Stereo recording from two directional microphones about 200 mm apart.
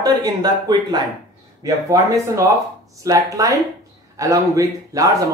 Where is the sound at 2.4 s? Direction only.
15° right (ahead or behind).